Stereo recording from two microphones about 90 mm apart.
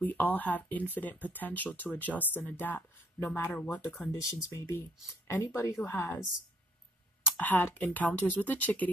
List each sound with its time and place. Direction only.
0.0 s speech: 20° left (ahead or behind)
4.2 s speech: 40° left (ahead or behind)
7.3 s speech: 20° left (ahead or behind)